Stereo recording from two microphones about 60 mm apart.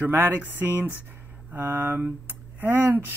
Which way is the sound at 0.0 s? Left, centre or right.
Right.